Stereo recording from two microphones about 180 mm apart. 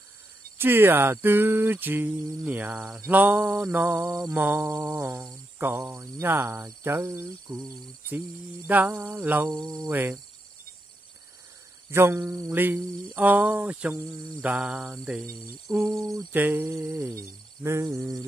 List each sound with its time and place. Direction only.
0.6 s speech: 10° right (ahead or behind)
8.6 s speech: 10° right (ahead or behind)
9.5 s cricket: 20° right (ahead or behind)
11.9 s speech: 15° right (ahead or behind)